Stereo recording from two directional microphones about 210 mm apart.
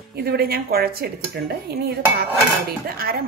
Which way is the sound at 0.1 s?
50° right (ahead or behind).